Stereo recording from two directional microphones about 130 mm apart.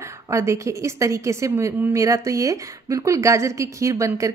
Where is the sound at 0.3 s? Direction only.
20° right (ahead or behind).